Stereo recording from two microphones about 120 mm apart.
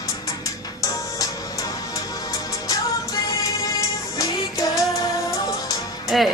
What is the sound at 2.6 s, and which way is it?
Music, 30° left (ahead or behind).